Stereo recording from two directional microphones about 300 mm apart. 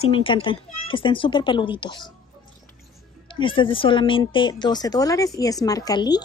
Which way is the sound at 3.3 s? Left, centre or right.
Centre.